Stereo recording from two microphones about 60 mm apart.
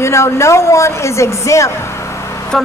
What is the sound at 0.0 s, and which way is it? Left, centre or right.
Speech, left.